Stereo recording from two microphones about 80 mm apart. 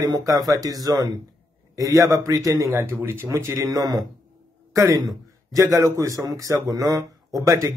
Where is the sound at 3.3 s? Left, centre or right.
Right.